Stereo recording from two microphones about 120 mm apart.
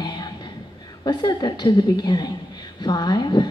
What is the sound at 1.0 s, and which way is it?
A woman's voice, 35° left (ahead or behind).